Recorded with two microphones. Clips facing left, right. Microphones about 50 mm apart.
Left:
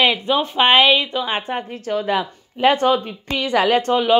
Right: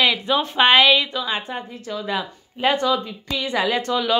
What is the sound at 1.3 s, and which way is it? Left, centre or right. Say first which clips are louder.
A woman's voice: left 3 dB; left.